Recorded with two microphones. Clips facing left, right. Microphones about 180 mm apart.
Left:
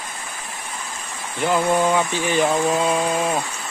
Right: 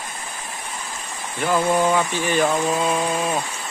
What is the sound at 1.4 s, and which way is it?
Speech, 15° left (ahead or behind).